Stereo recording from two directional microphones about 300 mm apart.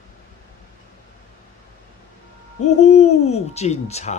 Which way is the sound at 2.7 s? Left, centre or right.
Left.